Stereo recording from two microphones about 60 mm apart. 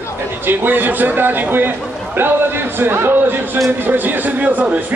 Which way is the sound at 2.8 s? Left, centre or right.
Right.